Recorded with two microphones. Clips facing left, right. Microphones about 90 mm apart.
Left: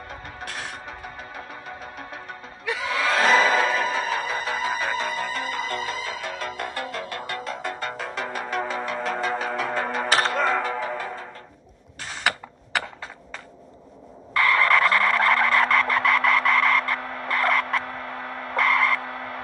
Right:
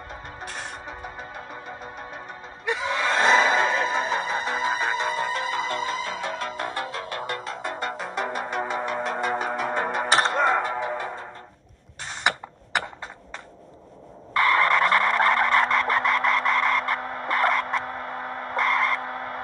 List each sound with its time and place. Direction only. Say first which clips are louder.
0.1 s music: even; centre (ahead or behind)
10.7 s music: even; 20° right (ahead or behind)
14.3 s vehicle: even; centre (ahead or behind)